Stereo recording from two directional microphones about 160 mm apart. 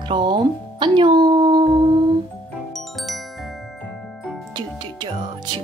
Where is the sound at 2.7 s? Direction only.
Centre (ahead or behind).